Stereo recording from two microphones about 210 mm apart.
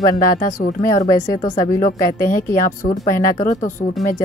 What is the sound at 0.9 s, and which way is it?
Speech, 15° left (ahead or behind).